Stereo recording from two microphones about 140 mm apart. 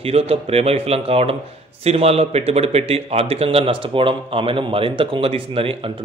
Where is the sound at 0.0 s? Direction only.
45° right (ahead or behind).